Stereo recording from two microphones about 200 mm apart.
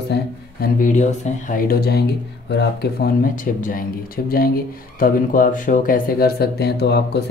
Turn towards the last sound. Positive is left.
turn(degrees=55)  # may be behind; listen again after turning